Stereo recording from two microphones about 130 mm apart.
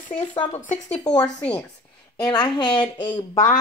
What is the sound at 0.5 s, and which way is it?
Speech, 65° left (ahead or behind).